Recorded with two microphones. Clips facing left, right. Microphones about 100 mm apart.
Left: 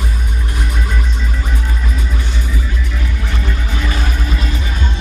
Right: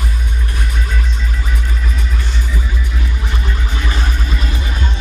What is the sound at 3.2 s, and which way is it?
Music, 20° right (ahead or behind).